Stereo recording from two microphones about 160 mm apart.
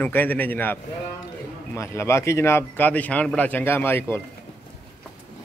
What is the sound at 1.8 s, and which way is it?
Speech, 15° left (ahead or behind).